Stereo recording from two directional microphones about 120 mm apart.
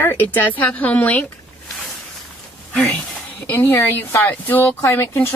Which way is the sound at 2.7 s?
10° left (ahead or behind).